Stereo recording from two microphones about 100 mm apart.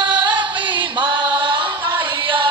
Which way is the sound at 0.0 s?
50° right (ahead or behind).